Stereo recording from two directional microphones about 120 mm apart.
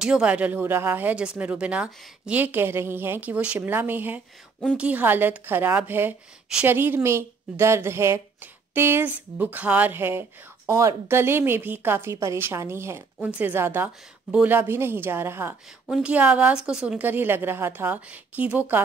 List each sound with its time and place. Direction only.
0.0 s a woman's voice: 10° right (ahead or behind)